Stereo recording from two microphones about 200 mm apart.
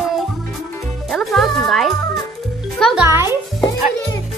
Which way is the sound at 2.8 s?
Centre (ahead or behind).